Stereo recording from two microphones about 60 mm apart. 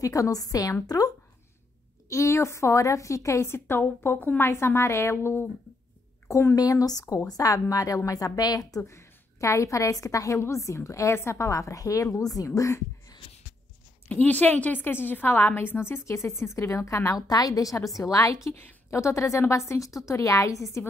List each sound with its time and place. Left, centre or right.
0.0 s speech: left
2.0 s a woman's voice: left
6.2 s speech: left
7.7 s speech: left
8.8 s a woman's voice: left
10.4 s a woman's voice: left
12.5 s a woman's voice: left
14.0 s a woman's voice: left